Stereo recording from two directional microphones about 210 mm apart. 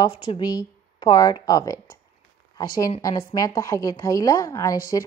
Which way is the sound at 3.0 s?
15° left (ahead or behind).